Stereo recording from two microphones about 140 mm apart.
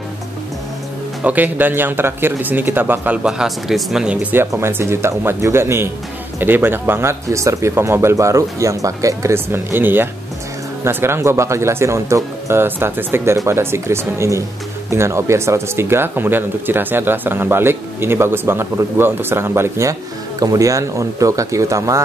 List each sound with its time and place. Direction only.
1.2 s speech: 10° right (ahead or behind)